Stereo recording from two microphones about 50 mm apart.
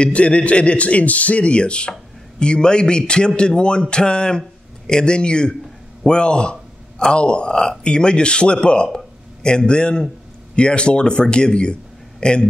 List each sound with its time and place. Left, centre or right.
0.0 s a man's voice: left